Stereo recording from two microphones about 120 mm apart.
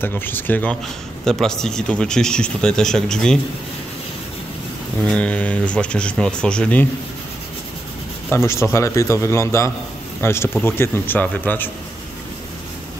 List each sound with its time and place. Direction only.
0.0 s speech: 15° left (ahead or behind)
1.2 s a man's voice: 5° left (ahead or behind)
5.0 s speech: 10° left (ahead or behind)
8.3 s a man's voice: 20° left (ahead or behind)